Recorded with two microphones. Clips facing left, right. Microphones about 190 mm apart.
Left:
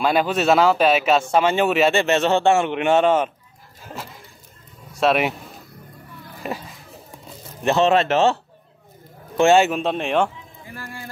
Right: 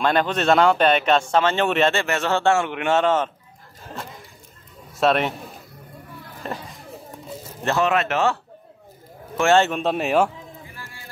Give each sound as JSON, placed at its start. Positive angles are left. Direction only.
{"t": 0.0, "sound": "speech", "side_deg": 5}
{"t": 2.0, "sound": "a man's voice", "side_deg": 20}
{"t": 5.0, "sound": "speech", "side_deg": 5}
{"t": 6.4, "sound": "speech", "side_deg": 10}
{"t": 7.6, "sound": "a man's voice", "side_deg": 25}
{"t": 9.4, "sound": "speech", "side_deg": 10}
{"t": 9.8, "sound": "speech", "side_deg": -5}